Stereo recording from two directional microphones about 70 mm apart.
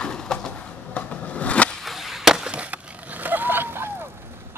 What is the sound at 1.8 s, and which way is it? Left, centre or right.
Chop, centre.